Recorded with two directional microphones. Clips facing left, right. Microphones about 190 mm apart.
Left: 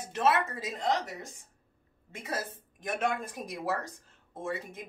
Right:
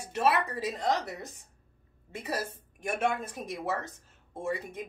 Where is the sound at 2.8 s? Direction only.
10° right (ahead or behind).